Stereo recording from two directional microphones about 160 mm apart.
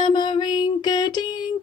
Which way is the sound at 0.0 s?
30° left (ahead or behind).